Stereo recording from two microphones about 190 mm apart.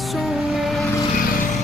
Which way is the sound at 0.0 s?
Centre (ahead or behind).